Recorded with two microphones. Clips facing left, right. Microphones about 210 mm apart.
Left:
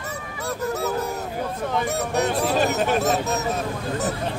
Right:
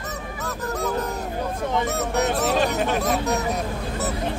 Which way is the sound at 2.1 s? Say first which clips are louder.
Even; 10° left (ahead or behind).